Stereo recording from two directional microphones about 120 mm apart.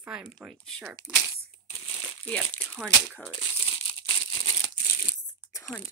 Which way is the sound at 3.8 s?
35° left (ahead or behind).